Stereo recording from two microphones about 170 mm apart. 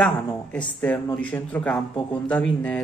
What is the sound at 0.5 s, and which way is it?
A man's voice, 5° left (ahead or behind).